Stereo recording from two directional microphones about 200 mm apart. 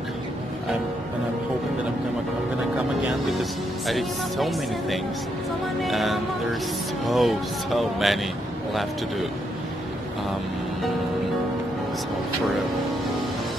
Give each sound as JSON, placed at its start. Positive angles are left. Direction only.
{"t": 3.3, "sound": "speech", "side_deg": 0}